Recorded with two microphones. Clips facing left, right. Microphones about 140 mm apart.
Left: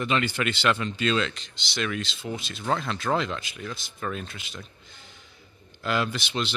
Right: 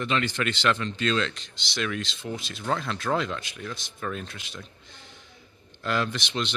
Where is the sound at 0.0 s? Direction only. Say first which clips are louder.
Left 1 dB; 5° left (ahead or behind).